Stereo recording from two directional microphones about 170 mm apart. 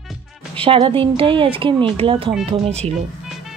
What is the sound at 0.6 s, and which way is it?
Speech, 30° right (ahead or behind).